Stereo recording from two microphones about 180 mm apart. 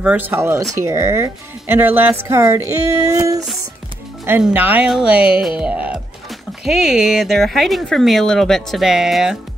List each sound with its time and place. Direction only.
0.0 s speech: 10° right (ahead or behind)